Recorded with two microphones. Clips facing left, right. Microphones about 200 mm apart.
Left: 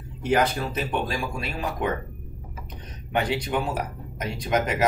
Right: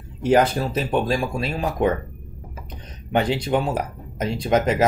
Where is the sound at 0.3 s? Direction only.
35° right (ahead or behind).